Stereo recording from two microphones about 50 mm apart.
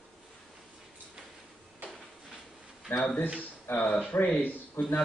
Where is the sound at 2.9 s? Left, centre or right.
Left.